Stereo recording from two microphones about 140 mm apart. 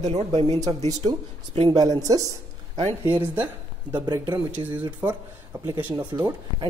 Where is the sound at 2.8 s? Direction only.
45° right (ahead or behind).